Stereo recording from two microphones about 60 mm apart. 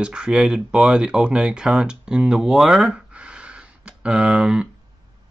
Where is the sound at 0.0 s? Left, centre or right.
Centre.